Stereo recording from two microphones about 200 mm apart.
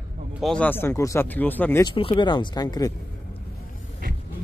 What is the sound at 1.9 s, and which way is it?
Speech, 25° left (ahead or behind).